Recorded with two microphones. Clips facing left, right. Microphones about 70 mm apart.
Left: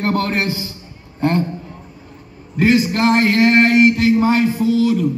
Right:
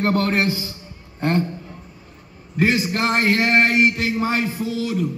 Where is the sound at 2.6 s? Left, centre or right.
Centre.